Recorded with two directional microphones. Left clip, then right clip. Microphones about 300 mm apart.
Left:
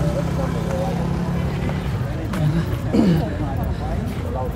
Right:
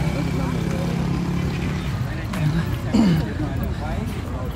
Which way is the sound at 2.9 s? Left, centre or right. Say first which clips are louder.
Left 1 dB; right.